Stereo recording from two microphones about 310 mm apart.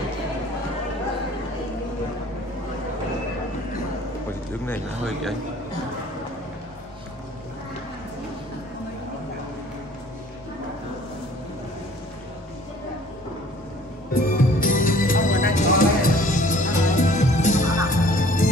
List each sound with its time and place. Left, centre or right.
4.6 s speech: centre
14.1 s music: left